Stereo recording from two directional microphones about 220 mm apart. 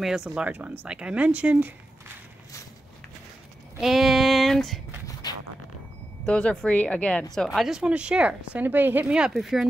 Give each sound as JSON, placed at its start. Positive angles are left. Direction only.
{"t": 0.0, "sound": "speech", "side_deg": -5}
{"t": 3.8, "sound": "child singing", "side_deg": 0}
{"t": 6.2, "sound": "speech", "side_deg": 5}